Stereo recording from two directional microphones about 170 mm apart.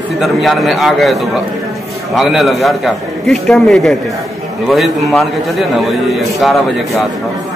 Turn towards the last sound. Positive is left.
turn(degrees=0)  # may be behind; listen again after turning